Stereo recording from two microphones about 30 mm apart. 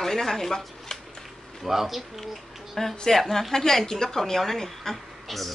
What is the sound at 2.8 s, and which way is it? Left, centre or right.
A woman's voice, centre.